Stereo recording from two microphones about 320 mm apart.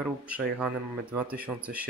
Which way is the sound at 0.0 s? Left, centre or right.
Centre.